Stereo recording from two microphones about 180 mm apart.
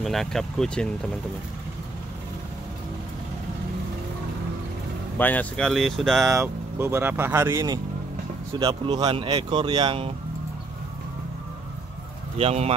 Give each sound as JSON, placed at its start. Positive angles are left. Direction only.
{"t": 0.0, "sound": "speech", "side_deg": 0}
{"t": 5.1, "sound": "speech", "side_deg": 10}
{"t": 6.2, "sound": "speech", "side_deg": -15}
{"t": 12.4, "sound": "speech", "side_deg": -35}